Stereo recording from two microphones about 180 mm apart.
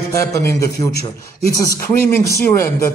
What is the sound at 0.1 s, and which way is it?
Speech, 15° left (ahead or behind).